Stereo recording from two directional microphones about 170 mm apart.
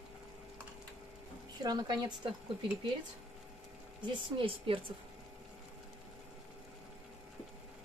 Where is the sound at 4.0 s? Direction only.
30° right (ahead or behind).